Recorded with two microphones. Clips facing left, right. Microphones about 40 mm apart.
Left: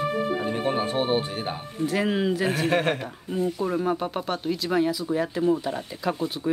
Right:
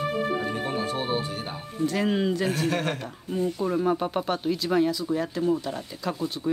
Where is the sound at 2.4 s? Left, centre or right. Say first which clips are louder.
Left 3 dB; left.